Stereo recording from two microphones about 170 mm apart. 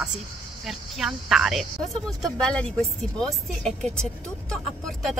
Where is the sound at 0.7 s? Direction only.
Centre (ahead or behind).